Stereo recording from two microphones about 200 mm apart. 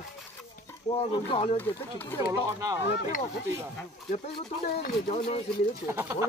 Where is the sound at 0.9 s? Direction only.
30° left (ahead or behind).